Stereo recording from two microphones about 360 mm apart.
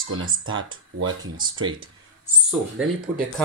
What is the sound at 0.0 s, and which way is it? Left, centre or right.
Speech, right.